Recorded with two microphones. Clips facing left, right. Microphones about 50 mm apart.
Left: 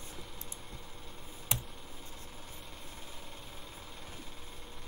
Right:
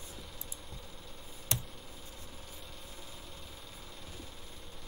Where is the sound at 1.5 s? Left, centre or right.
Centre.